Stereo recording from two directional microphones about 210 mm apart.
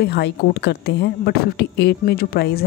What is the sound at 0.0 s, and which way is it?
Speech, 50° left (ahead or behind).